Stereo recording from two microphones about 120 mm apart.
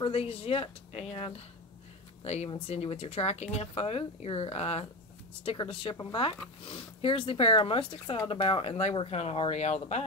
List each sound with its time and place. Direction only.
0.0 s speech: 55° left (ahead or behind)
2.5 s speech: 55° left (ahead or behind); by 10.0 s 70° left (ahead or behind)